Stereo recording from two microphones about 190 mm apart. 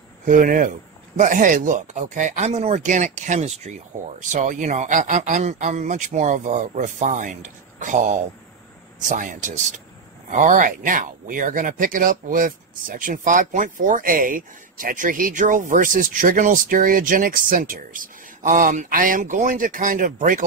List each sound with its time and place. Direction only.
0.2 s speech: 45° right (ahead or behind)